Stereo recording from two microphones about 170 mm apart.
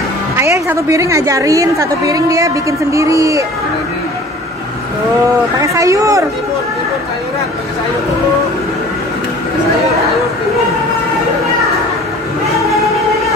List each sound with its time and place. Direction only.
0.4 s a woman's voice: 15° right (ahead or behind)
5.6 s a woman's voice: 20° right (ahead or behind)